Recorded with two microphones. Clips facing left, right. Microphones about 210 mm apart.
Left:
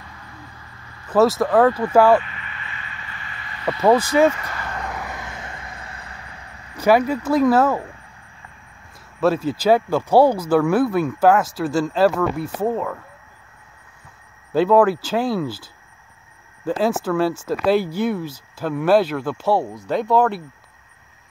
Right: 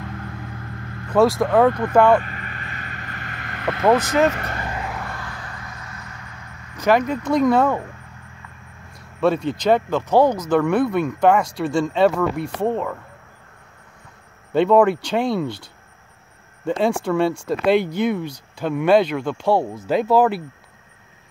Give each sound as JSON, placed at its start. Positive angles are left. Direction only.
{"t": 0.0, "sound": "vehicle", "side_deg": -65}
{"t": 1.0, "sound": "speech", "side_deg": 5}
{"t": 2.2, "sound": "vehicle", "side_deg": -45}
{"t": 3.4, "sound": "vehicle", "side_deg": -65}
{"t": 4.3, "sound": "speech", "side_deg": -60}
{"t": 4.7, "sound": "vehicle", "side_deg": 0}
{"t": 5.1, "sound": "vehicle", "side_deg": 20}
{"t": 6.8, "sound": "speech", "side_deg": 10}
{"t": 9.2, "sound": "speech", "side_deg": 5}
{"t": 14.5, "sound": "speech", "side_deg": 5}